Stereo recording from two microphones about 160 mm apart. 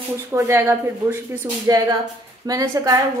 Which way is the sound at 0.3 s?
15° right (ahead or behind).